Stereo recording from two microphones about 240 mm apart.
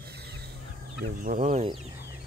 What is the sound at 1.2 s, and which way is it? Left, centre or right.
Speech, right.